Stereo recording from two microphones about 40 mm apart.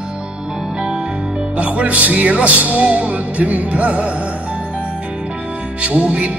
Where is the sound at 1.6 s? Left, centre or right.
Right.